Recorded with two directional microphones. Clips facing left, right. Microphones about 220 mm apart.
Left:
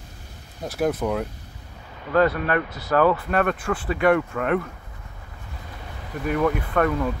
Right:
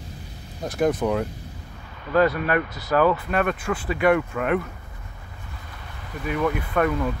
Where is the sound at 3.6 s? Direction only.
30° left (ahead or behind).